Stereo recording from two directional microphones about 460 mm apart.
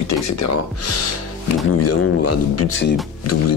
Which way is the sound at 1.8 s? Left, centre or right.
Left.